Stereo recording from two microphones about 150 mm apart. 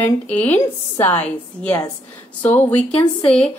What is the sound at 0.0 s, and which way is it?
A woman's voice, 10° left (ahead or behind).